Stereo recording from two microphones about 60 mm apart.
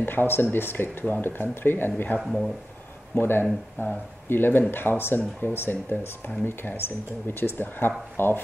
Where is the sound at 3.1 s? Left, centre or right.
Left.